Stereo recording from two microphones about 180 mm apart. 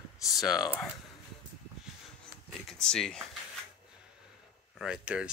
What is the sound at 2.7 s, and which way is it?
Speech, 5° left (ahead or behind).